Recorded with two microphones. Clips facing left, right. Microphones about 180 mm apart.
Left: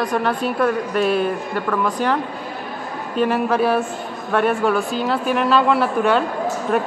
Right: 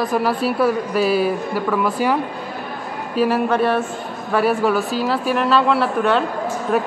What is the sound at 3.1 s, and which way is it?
A woman's voice, centre (ahead or behind).